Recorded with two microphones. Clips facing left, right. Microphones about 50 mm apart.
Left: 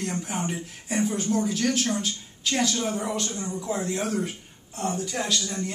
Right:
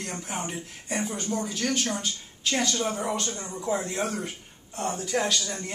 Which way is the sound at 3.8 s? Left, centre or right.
Centre.